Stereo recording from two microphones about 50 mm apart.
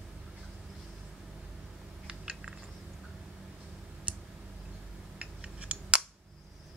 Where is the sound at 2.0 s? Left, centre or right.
Centre.